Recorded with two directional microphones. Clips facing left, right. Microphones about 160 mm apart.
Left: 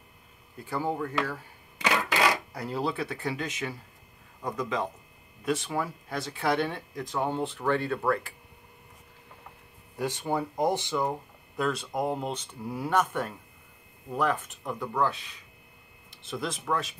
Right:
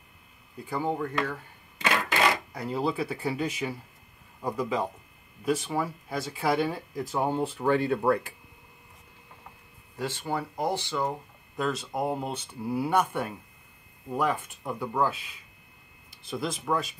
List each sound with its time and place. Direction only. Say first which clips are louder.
0.7 s a sound: right 1 dB; centre (ahead or behind)
2.5 s speech: right 2 dB; centre (ahead or behind); by 8.2 s 15° right (ahead or behind)
9.9 s speech: left 2 dB; 15° left (ahead or behind)
11.5 s speech: left 1 dB; centre (ahead or behind)